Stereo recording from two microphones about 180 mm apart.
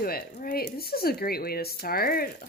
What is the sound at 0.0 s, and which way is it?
A woman's voice, 55° left (ahead or behind).